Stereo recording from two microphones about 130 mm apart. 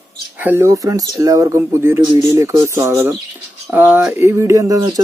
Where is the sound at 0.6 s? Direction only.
25° right (ahead or behind).